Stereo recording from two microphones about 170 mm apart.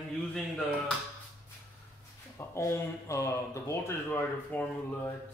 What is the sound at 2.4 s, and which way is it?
Speech, 20° left (ahead or behind).